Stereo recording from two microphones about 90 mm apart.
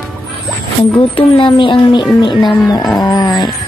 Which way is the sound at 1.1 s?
75° left (ahead or behind).